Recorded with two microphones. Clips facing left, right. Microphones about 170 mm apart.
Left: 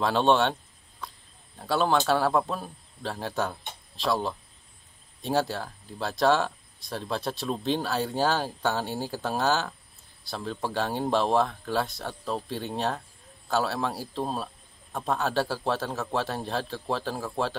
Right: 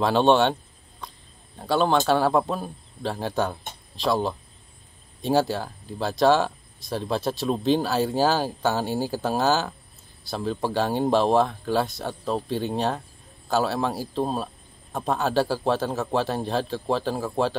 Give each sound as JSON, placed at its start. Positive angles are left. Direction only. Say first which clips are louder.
{"t": 0.0, "sound": "speech", "louder": "right 4 dB", "side_deg": 0}
{"t": 1.0, "sound": "a sound", "louder": "even", "side_deg": 0}
{"t": 1.7, "sound": "speech", "louder": "right 3 dB", "side_deg": 0}